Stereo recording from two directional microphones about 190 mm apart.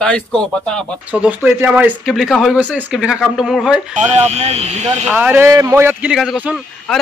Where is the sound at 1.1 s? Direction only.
10° right (ahead or behind).